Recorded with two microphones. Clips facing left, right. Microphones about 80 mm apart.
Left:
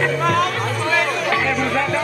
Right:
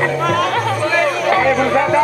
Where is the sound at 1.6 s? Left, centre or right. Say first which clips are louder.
Right 6 dB; right.